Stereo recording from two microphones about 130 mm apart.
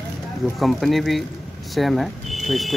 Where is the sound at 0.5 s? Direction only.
Centre (ahead or behind).